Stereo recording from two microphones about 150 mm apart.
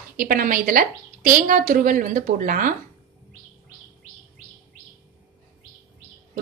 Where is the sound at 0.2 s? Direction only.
65° right (ahead or behind).